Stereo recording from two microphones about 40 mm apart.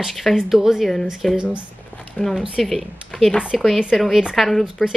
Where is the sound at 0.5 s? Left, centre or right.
Centre.